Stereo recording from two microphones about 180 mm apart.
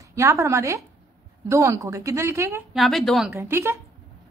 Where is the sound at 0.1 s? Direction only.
15° right (ahead or behind).